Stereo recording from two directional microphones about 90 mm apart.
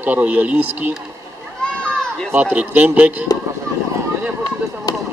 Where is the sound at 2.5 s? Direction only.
15° right (ahead or behind).